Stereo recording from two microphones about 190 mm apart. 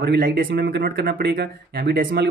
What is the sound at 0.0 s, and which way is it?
Speech, 55° right (ahead or behind).